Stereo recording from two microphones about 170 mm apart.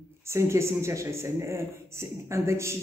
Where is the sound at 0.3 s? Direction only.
15° right (ahead or behind).